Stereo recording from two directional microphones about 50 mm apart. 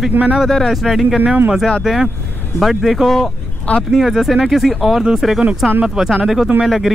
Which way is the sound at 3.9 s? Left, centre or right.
Centre.